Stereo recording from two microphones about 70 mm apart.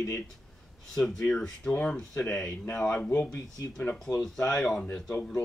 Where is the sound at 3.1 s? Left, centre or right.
Left.